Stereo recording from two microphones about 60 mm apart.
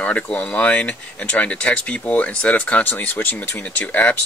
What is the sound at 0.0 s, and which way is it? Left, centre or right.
Speech, left.